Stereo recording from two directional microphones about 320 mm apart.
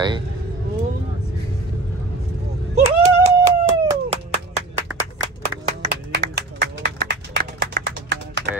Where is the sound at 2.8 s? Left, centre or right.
Right.